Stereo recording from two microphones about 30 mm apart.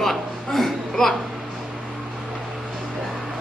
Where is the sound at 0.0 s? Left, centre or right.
Centre.